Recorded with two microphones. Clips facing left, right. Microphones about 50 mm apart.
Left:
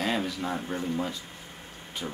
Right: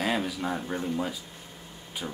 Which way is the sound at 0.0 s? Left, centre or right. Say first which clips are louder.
Right 1 dB; centre.